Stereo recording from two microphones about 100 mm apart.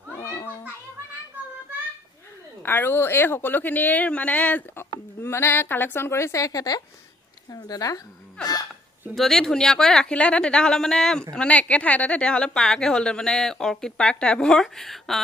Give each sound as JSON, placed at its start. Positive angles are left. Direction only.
{"t": 0.1, "sound": "children playing", "side_deg": 25}
{"t": 2.6, "sound": "speech", "side_deg": 20}
{"t": 9.1, "sound": "a woman's voice", "side_deg": 5}